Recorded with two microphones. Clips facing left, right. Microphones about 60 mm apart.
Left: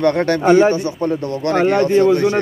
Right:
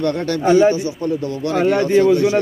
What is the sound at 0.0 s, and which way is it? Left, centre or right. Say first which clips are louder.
A man's voice: left 4 dB; left.